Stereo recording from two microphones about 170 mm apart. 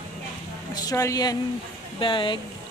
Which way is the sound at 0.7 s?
20° left (ahead or behind).